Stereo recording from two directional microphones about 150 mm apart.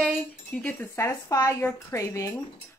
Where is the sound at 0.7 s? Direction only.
15° left (ahead or behind).